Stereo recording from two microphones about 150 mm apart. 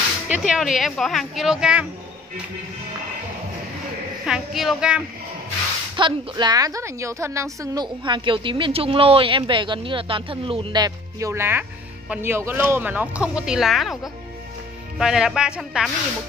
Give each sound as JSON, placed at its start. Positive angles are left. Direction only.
{"t": 0.3, "sound": "a woman's voice", "side_deg": -5}
{"t": 4.3, "sound": "a woman's voice", "side_deg": 0}
{"t": 5.9, "sound": "a woman's voice", "side_deg": -30}